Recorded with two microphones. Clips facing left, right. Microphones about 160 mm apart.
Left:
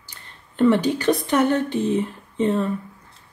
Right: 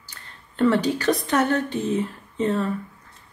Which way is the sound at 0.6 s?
15° left (ahead or behind).